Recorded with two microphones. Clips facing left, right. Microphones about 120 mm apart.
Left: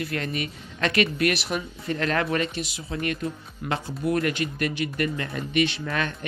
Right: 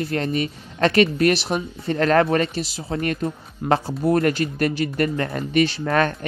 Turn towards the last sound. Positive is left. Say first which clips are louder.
# right 8 dB
turn(degrees=-50)  # may be behind; listen again after turning